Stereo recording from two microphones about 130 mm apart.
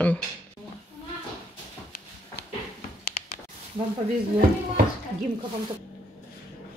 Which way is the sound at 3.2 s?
65° left (ahead or behind).